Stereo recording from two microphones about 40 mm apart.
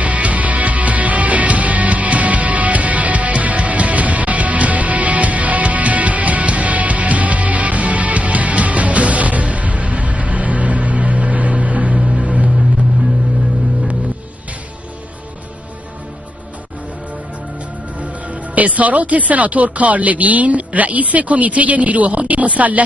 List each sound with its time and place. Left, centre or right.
0.0 s music: right
12.0 s vehicle: centre
17.9 s speech: right